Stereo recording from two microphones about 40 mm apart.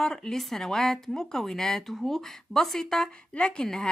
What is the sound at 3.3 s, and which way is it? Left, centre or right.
Speech, left.